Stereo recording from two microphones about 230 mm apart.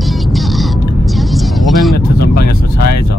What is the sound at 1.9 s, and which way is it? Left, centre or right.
Vehicle, left.